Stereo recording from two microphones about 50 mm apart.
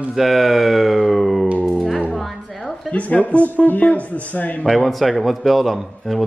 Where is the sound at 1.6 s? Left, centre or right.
Centre.